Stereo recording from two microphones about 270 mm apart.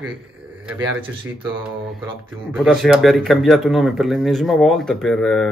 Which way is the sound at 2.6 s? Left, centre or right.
Centre.